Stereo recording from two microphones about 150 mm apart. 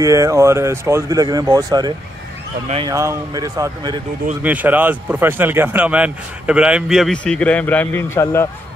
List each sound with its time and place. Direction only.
0.0 s speech: 20° right (ahead or behind)
2.9 s speech: 20° right (ahead or behind)
4.4 s speech: 10° right (ahead or behind); by 8.5 s 15° left (ahead or behind)